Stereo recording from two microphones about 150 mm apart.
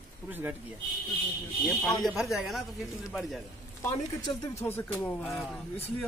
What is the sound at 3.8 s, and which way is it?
A man's voice, 20° left (ahead or behind).